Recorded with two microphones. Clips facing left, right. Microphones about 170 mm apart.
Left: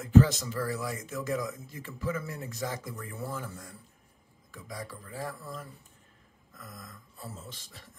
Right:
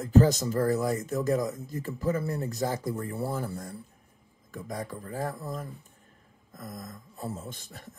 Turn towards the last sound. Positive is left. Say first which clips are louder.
# right 6 dB
turn(degrees=-50)  # may be behind; listen again after turning